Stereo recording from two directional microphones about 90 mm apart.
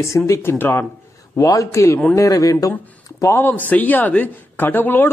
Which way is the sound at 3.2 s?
25° left (ahead or behind).